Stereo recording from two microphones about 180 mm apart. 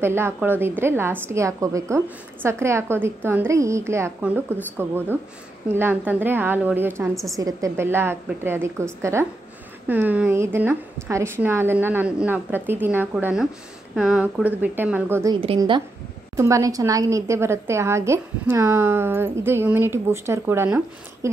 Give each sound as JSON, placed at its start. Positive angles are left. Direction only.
{"t": 0.0, "sound": "a woman's voice", "side_deg": -15}
{"t": 5.8, "sound": "a woman's voice", "side_deg": -10}
{"t": 9.8, "sound": "a woman's voice", "side_deg": -10}
{"t": 15.4, "sound": "a woman's voice", "side_deg": -30}
{"t": 16.3, "sound": "a woman's voice", "side_deg": -20}